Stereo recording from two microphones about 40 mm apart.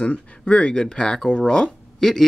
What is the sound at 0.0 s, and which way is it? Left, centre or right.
Speech, left.